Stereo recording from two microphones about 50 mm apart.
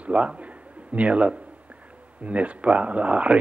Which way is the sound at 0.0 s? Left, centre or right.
Right.